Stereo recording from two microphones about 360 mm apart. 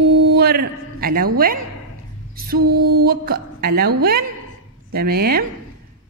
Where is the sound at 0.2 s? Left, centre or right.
Right.